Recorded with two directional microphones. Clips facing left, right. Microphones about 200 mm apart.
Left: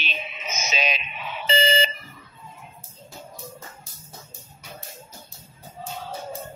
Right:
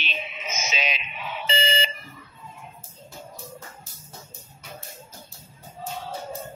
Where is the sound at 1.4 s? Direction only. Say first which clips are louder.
Left 5 dB; 40° left (ahead or behind).